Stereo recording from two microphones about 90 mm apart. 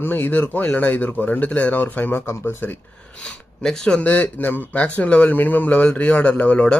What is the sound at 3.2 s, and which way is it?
Speech, 5° left (ahead or behind).